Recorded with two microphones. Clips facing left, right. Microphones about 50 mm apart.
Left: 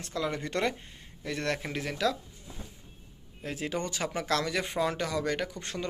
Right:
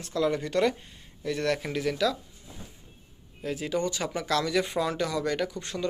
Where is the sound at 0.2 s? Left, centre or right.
Left.